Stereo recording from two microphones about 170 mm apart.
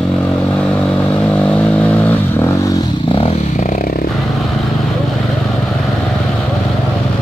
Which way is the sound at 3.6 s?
45° left (ahead or behind).